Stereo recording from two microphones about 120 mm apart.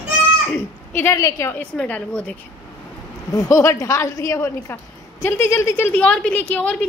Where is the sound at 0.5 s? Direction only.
20° left (ahead or behind).